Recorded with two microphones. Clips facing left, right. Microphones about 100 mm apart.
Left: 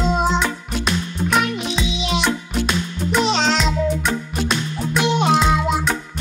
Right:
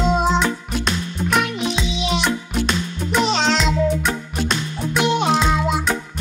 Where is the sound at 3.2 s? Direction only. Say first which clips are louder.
Right 1 dB; centre (ahead or behind).